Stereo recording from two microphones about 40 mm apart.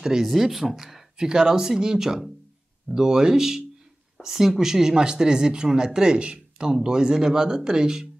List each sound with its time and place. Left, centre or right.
0.0 s speech: centre
1.1 s speech: centre